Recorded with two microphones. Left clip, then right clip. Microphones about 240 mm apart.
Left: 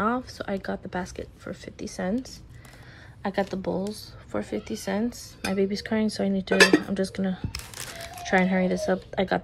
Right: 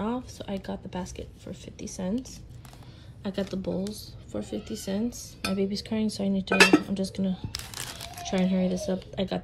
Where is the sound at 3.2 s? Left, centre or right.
Centre.